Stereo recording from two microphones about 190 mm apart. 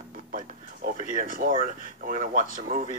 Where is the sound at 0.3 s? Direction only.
45° right (ahead or behind).